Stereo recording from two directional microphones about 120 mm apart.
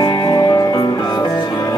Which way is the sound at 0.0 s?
35° left (ahead or behind).